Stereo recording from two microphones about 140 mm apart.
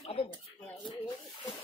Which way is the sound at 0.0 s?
45° left (ahead or behind).